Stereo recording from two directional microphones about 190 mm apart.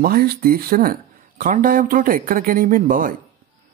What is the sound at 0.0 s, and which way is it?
Speech, 55° right (ahead or behind).